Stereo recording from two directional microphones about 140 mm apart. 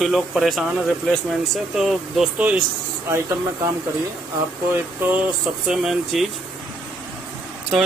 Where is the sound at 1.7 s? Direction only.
5° right (ahead or behind).